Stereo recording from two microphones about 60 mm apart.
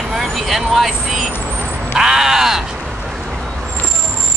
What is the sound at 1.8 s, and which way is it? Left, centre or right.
Crow, centre.